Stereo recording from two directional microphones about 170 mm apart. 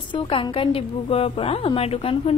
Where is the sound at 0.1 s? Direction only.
30° left (ahead or behind).